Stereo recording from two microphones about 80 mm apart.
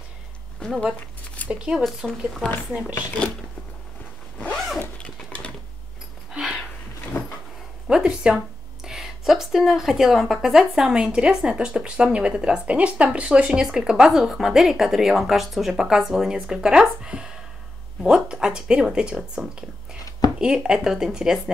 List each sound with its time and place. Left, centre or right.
0.6 s speech: centre
1.5 s speech: centre
1.8 s speech: centre
2.0 s speech: centre
2.7 s speech: right
4.7 s zipper: centre
6.3 s a sound: centre
7.9 s speech: centre